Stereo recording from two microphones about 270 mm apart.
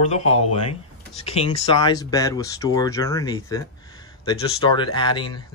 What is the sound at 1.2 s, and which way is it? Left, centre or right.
Speech, left.